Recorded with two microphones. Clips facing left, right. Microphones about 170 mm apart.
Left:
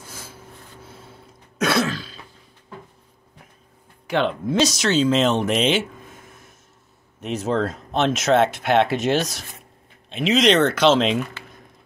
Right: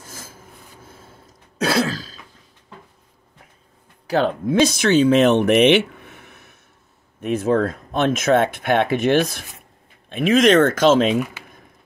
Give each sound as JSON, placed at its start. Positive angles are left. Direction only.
{"t": 0.1, "sound": "a sound", "side_deg": -45}
{"t": 1.6, "sound": "throat clearing", "side_deg": -35}
{"t": 4.1, "sound": "speech", "side_deg": -40}
{"t": 4.5, "sound": "speech", "side_deg": -55}
{"t": 7.2, "sound": "speech", "side_deg": -55}
{"t": 11.1, "sound": "speech", "side_deg": -10}